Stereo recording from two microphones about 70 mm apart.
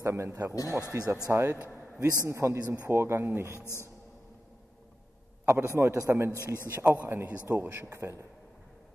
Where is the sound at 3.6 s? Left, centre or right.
Left.